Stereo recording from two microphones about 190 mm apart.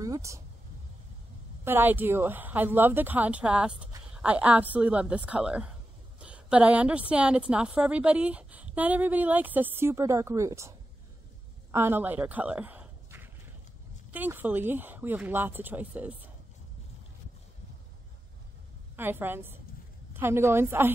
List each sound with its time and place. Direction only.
0.0 s a sound: 15° right (ahead or behind)
1.6 s a woman's voice: 10° right (ahead or behind)
11.7 s a woman's voice: 10° right (ahead or behind)
18.9 s a woman's voice: 10° right (ahead or behind)